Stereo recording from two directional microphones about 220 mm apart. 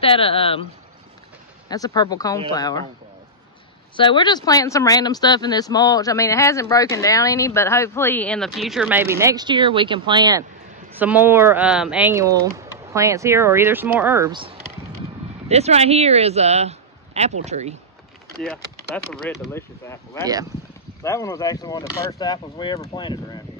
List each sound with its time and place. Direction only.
0.0 s speech: 25° left (ahead or behind)
1.7 s speech: 15° left (ahead or behind)
3.9 s speech: 20° left (ahead or behind); by 10.4 s 20° right (ahead or behind)
11.0 s speech: 10° right (ahead or behind)
15.4 s speech: 30° right (ahead or behind)
19.1 s speech: centre (ahead or behind)
19.5 s speech: 10° left (ahead or behind)